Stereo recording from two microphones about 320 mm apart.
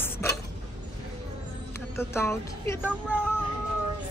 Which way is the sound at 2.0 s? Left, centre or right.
Centre.